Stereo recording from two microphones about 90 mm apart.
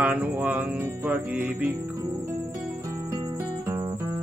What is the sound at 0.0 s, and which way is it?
Music, 20° right (ahead or behind).